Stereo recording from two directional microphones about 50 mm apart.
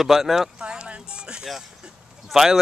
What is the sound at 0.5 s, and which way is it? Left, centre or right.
Music, centre.